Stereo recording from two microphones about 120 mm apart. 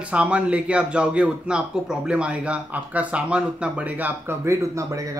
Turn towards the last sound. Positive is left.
turn(degrees=-25)  # may be behind; listen again after turning